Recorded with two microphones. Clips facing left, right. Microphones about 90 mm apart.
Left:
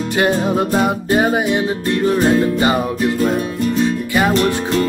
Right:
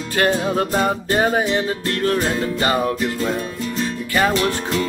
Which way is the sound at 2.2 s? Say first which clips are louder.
Left 7 dB; 35° left (ahead or behind).